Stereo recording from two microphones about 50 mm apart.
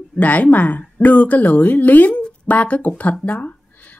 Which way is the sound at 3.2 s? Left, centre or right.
Left.